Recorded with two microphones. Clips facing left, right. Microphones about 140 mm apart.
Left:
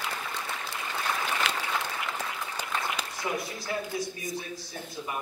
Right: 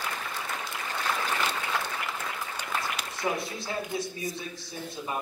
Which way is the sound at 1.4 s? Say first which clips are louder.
Even; 90° left.